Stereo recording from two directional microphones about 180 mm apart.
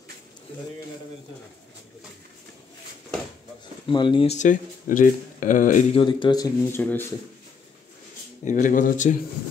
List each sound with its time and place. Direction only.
3.8 s speech: 25° left (ahead or behind)
4.4 s speech: 45° left (ahead or behind)
5.9 s speech: 25° left (ahead or behind)
6.8 s speech: 10° left (ahead or behind)
8.5 s speech: 45° left (ahead or behind)